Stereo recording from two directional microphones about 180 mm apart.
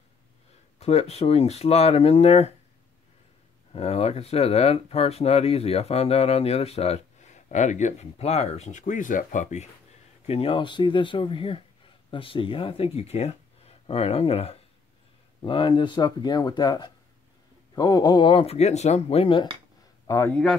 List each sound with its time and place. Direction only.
0.7 s speech: 35° left (ahead or behind)
3.7 s speech: 35° left (ahead or behind)
20.1 s a man's voice: 15° left (ahead or behind)